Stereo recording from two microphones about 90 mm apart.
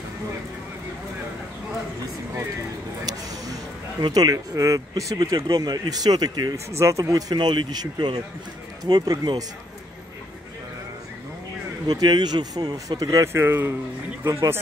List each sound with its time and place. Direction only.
4.1 s speech: 45° right (ahead or behind)
6.5 s speech: 35° right (ahead or behind)
7.3 s speech: 55° right (ahead or behind)
11.9 s speech: 50° right (ahead or behind)
13.3 s speech: 25° right (ahead or behind)